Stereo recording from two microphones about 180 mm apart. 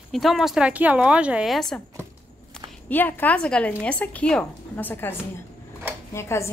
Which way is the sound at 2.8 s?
10° left (ahead or behind).